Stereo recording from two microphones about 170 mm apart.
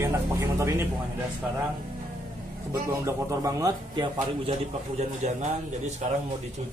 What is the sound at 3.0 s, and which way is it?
A man's voice, 20° right (ahead or behind).